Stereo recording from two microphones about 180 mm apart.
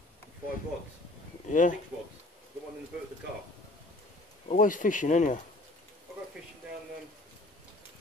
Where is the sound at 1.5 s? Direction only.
45° left (ahead or behind).